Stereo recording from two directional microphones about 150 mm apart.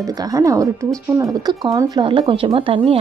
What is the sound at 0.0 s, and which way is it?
Speech, 25° right (ahead or behind).